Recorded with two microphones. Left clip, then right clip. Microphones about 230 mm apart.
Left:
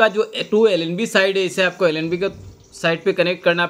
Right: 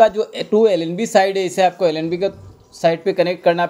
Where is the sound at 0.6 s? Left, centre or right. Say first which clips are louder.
Right 1 dB; centre.